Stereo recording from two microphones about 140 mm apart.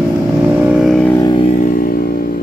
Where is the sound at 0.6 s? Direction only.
5° right (ahead or behind).